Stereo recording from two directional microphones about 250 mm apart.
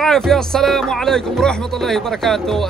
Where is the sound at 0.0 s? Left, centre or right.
Centre.